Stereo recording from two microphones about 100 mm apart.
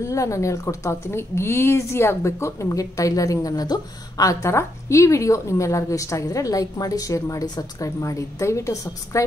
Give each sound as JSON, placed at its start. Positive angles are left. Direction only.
{"t": 0.0, "sound": "a woman's voice", "side_deg": 30}